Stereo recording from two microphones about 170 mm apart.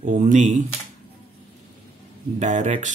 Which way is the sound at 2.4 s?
45° right (ahead or behind).